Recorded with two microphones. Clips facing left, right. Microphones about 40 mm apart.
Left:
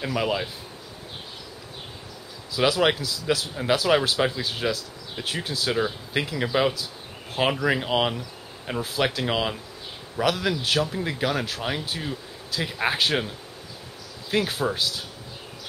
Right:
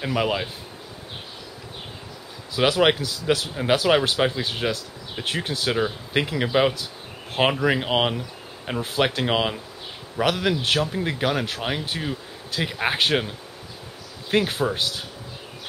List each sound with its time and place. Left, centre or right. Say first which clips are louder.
0.0 s speech: right 2 dB; centre
2.5 s speech: right 2 dB; right
5.7 s speech: right 1 dB; centre
14.3 s speech: right 3 dB; centre